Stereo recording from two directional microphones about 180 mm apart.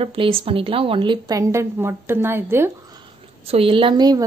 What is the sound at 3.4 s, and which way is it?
Speech, 30° right (ahead or behind).